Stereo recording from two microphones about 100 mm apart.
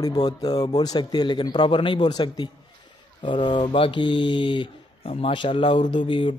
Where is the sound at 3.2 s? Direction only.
55° left (ahead or behind).